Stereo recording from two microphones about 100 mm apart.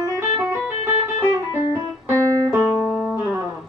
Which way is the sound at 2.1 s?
35° right (ahead or behind).